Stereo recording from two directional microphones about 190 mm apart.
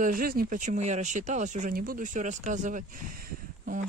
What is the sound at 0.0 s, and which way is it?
Speech, 50° right (ahead or behind).